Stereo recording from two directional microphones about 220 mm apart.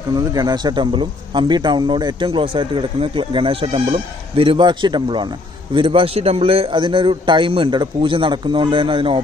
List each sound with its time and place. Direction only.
0.1 s speech: 20° right (ahead or behind)